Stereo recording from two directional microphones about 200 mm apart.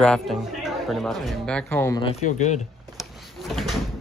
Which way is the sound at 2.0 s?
35° left (ahead or behind).